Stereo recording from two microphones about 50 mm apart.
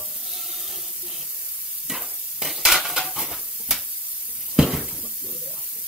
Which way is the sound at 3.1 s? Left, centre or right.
Centre.